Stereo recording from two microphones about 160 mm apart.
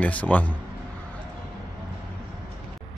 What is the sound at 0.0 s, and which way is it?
Speech, 10° left (ahead or behind).